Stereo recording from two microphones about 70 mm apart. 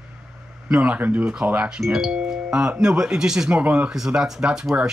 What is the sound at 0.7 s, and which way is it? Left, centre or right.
Speech, right.